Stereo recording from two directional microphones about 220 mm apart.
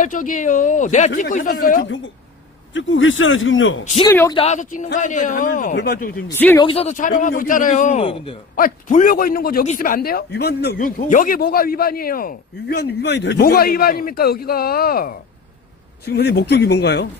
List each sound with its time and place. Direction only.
0.0 s speech: 35° left (ahead or behind)
2.7 s a man's voice: 60° left (ahead or behind)
4.0 s speech: 10° left (ahead or behind)
4.3 s a man's voice: 30° left (ahead or behind); by 6.1 s 45° left (ahead or behind)
6.2 s speech: 10° left (ahead or behind)
6.6 s speech: 25° left (ahead or behind)
8.5 s a man's voice: 35° left (ahead or behind)